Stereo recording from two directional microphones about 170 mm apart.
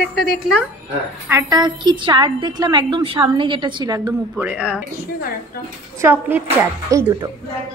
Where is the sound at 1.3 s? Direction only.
20° right (ahead or behind).